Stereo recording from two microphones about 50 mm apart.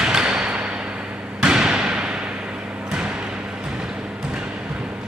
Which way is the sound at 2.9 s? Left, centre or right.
Centre.